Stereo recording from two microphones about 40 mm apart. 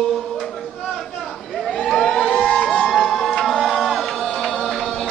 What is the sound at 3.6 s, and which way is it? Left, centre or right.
Music, centre.